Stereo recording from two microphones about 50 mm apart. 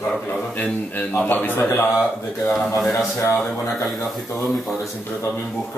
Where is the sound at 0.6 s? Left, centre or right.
Left.